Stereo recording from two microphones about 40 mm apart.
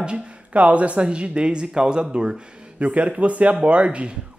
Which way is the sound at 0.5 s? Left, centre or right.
Right.